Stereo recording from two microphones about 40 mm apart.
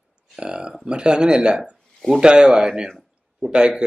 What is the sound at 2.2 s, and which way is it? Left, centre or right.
Speech, right.